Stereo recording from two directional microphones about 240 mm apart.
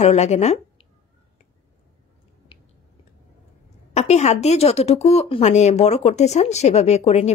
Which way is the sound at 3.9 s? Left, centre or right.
Left.